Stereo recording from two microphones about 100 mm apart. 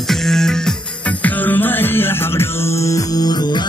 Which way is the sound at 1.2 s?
15° left (ahead or behind).